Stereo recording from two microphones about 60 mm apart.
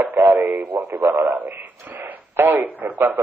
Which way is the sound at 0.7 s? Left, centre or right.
Right.